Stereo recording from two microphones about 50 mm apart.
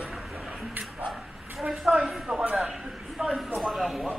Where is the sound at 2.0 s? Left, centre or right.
Centre.